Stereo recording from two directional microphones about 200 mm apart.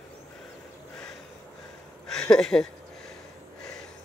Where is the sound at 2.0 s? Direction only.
5° left (ahead or behind).